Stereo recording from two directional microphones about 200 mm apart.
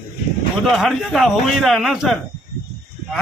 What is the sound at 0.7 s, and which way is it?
A man's voice, centre (ahead or behind).